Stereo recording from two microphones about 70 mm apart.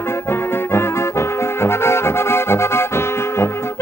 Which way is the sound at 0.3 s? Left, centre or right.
Left.